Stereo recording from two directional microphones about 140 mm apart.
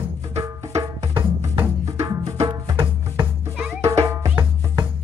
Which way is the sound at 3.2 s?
15° right (ahead or behind).